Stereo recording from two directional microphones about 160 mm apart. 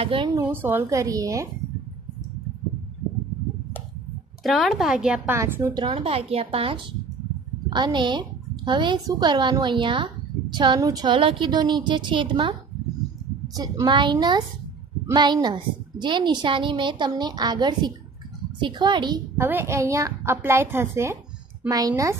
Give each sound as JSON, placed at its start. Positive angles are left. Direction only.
{"t": 0.0, "sound": "a woman's voice", "side_deg": -35}
{"t": 0.3, "sound": "a woman's voice", "side_deg": -15}
{"t": 4.4, "sound": "a woman's voice", "side_deg": 0}
{"t": 13.6, "sound": "a woman's voice", "side_deg": -25}
{"t": 19.4, "sound": "a woman's voice", "side_deg": -15}